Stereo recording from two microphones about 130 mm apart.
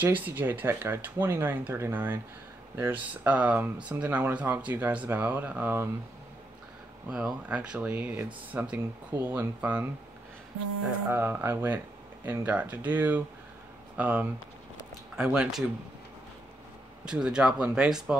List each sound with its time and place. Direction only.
0.0 s speech: 15° right (ahead or behind)
7.1 s speech: 10° right (ahead or behind)
11.1 s speech: 15° right (ahead or behind)
17.0 s speech: 5° right (ahead or behind)